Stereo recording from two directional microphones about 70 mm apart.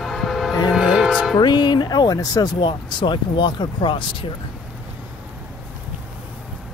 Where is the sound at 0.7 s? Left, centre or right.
Centre.